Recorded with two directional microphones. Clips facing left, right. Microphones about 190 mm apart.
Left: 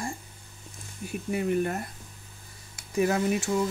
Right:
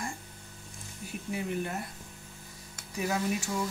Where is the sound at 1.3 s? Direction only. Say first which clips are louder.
Left 7 dB; 55° left (ahead or behind).